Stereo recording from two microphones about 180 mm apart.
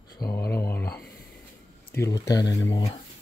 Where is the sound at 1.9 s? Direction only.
15° left (ahead or behind).